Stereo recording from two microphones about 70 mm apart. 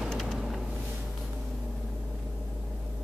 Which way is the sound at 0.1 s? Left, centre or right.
Centre.